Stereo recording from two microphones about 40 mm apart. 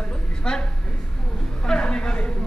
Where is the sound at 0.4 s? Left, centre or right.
Centre.